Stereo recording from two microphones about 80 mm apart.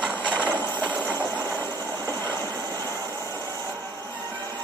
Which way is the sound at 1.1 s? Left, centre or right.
Left.